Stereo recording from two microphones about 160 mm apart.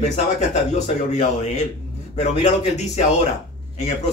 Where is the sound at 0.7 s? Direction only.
45° left (ahead or behind).